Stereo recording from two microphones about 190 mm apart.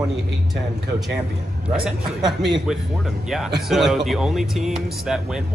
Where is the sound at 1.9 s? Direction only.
Centre (ahead or behind).